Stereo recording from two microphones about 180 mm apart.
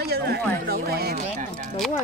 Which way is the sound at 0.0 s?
60° right (ahead or behind).